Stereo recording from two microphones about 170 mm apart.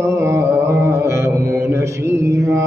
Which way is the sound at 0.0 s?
15° right (ahead or behind).